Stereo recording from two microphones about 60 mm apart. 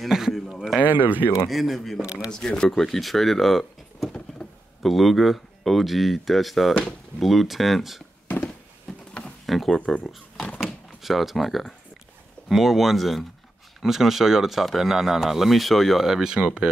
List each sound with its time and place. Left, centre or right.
0.1 s speech: centre
0.8 s speech: right
1.5 s speech: centre
2.3 s speech: centre
9.5 s speech: centre
10.3 s door: centre
10.6 s a sound: centre
12.4 s speech: centre